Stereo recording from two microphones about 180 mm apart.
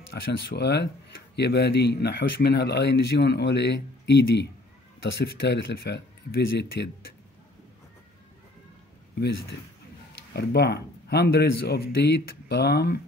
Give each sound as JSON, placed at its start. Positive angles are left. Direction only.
{"t": 0.1, "sound": "speech", "side_deg": 60}
{"t": 10.3, "sound": "speech", "side_deg": 65}